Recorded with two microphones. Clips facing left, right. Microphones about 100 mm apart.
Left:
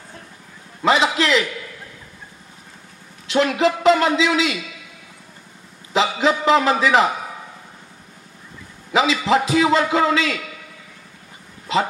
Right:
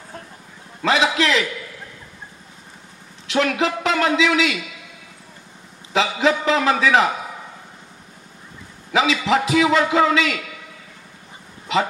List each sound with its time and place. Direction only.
0.8 s a man's voice: 35° left (ahead or behind)
3.3 s a woman's voice: 35° left (ahead or behind)
5.9 s a man's voice: 35° left (ahead or behind)
8.9 s a man's voice: 35° left (ahead or behind)